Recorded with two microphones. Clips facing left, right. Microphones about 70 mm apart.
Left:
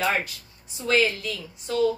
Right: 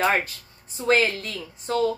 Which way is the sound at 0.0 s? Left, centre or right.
Right.